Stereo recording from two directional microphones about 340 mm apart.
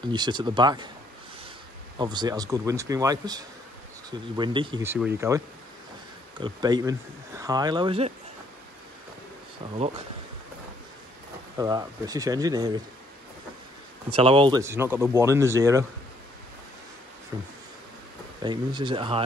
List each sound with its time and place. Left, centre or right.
0.0 s speech: centre
2.0 s speech: centre
6.4 s speech: centre
9.8 s speech: centre
11.5 s speech: centre
14.1 s speech: centre
17.3 s speech: centre